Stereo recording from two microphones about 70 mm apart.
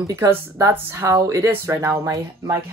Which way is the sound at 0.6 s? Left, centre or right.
Right.